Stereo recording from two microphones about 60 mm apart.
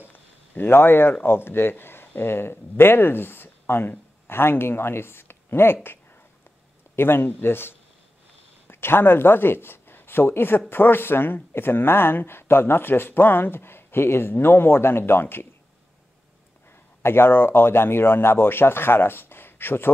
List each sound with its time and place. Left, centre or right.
0.0 s a sound: left
1.2 s speech: left
7.0 s a man's voice: left
17.0 s speech: left